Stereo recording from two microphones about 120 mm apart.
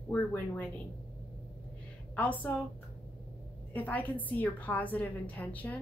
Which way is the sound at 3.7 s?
15° left (ahead or behind).